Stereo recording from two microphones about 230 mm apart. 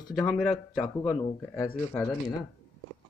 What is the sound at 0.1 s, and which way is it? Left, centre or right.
Speech, centre.